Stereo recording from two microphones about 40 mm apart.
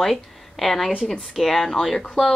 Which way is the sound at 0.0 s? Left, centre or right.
Centre.